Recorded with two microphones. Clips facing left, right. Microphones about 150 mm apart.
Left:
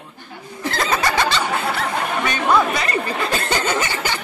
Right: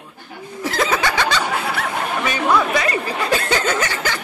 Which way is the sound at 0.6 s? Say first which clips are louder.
Right 1 dB; 5° right (ahead or behind).